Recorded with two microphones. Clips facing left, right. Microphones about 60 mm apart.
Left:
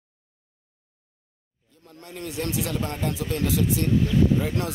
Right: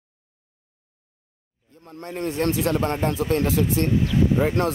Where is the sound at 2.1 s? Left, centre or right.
Right.